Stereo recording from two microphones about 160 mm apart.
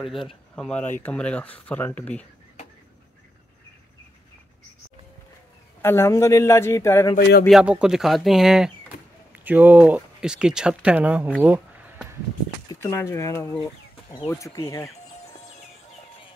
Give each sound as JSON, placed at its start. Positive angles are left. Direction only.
{"t": 0.0, "sound": "speech", "side_deg": 0}
{"t": 5.8, "sound": "speech", "side_deg": 15}
{"t": 7.2, "sound": "speech", "side_deg": 90}
{"t": 7.4, "sound": "speech", "side_deg": -5}
{"t": 11.4, "sound": "a sound", "side_deg": -10}
{"t": 12.6, "sound": "speech", "side_deg": 20}